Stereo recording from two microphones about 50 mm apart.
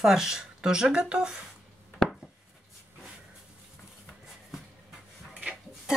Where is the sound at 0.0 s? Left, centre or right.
Centre.